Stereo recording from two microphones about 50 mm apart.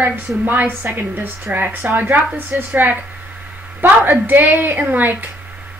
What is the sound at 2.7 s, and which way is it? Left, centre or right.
Speech, right.